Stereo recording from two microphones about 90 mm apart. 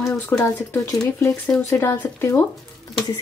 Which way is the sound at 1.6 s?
30° left (ahead or behind).